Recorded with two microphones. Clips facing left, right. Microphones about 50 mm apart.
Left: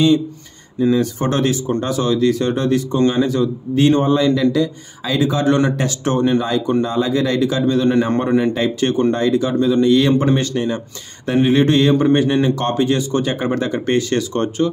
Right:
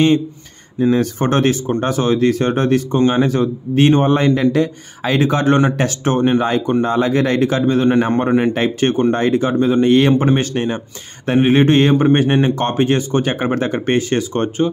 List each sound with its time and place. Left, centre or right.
0.7 s a man's voice: right
10.1 s speech: right